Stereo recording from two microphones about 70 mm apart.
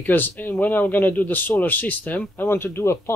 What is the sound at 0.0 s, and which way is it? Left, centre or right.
A man's voice, left.